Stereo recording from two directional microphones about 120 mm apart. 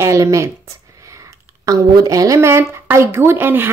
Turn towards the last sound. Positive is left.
turn(degrees=-15)  # may be behind; listen again after turning